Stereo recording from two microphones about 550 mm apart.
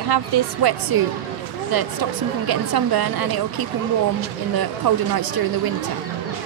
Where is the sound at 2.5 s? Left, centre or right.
Right.